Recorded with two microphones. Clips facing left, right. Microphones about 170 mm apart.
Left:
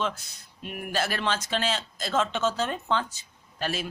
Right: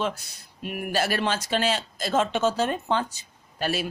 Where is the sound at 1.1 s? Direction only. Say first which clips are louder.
Right 3 dB; 45° right (ahead or behind).